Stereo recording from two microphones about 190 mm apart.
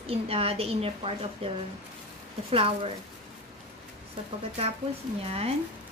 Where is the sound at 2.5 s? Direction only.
30° right (ahead or behind).